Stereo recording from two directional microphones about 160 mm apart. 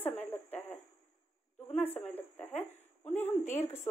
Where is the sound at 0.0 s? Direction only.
10° left (ahead or behind).